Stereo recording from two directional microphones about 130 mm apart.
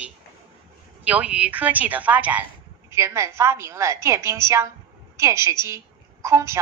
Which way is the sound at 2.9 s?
20° right (ahead or behind).